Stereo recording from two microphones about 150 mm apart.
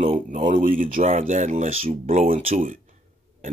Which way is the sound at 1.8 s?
40° right (ahead or behind).